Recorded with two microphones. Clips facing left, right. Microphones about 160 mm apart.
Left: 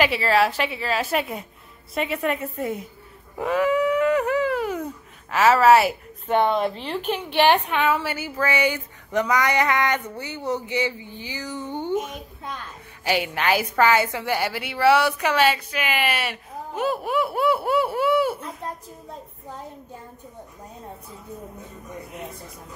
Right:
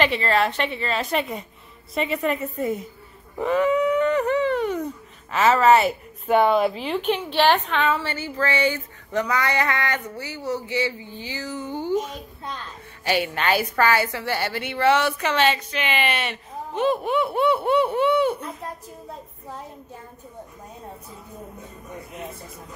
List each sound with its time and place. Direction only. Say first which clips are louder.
0.0 s a woman's voice: left 1 dB; 5° left (ahead or behind)
3.3 s a sound: right 1 dB; centre (ahead or behind)
5.3 s a woman's voice: left 1 dB; centre (ahead or behind)
6.2 s speech: right 2 dB; 5° right (ahead or behind)
7.2 s a woman's voice: left 3 dB; 15° left (ahead or behind)
11.7 s a sound: right 1 dB; 20° left (ahead or behind)
13.0 s a woman's voice: even; 15° left (ahead or behind)